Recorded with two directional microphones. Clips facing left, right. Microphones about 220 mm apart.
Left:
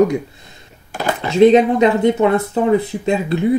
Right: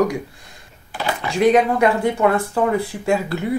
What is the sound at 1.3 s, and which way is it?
Speech, 25° left (ahead or behind).